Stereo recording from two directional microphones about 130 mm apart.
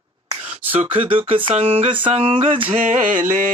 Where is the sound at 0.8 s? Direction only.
40° right (ahead or behind).